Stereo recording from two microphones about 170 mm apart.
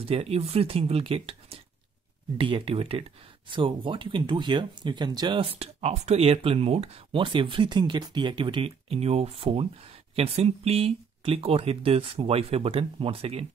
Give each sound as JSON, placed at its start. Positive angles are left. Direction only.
{"t": 0.0, "sound": "speech", "side_deg": -35}